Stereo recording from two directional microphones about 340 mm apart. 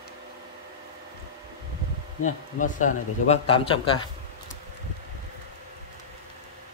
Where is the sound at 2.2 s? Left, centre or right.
Left.